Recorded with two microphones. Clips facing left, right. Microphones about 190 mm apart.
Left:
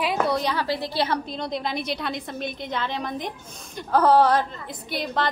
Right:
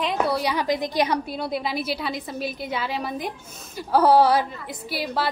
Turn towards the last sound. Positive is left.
turn(degrees=-5)  # may be behind; listen again after turning